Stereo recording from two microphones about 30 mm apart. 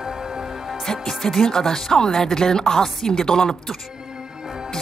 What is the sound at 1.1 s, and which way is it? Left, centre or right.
Speech, centre.